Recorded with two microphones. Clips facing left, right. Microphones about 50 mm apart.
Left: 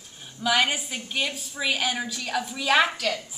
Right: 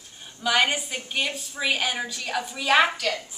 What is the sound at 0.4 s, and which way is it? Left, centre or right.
A woman's voice, centre.